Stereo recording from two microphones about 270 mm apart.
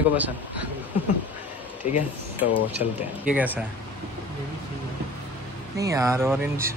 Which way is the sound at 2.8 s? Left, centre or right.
Left.